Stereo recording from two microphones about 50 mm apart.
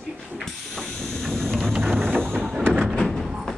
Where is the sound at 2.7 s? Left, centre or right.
Centre.